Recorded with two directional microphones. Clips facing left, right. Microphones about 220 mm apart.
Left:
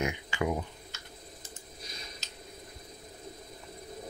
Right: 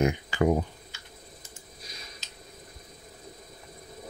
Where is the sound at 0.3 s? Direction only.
40° right (ahead or behind).